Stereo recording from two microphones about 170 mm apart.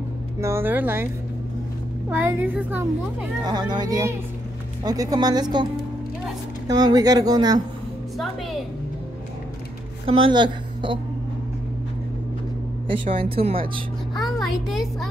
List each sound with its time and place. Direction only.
0.4 s a child's voice: 15° right (ahead or behind)
2.0 s a child's voice: 10° right (ahead or behind)
3.4 s speech: 25° right (ahead or behind)
6.7 s speech: 20° right (ahead or behind)
10.0 s a woman's voice: 30° right (ahead or behind)
12.8 s speech: 30° right (ahead or behind)
14.2 s a child's voice: centre (ahead or behind)